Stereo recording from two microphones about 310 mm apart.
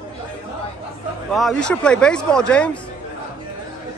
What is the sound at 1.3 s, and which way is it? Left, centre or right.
Speech, centre.